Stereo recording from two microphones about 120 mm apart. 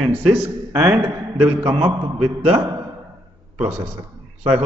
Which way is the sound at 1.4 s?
45° right (ahead or behind).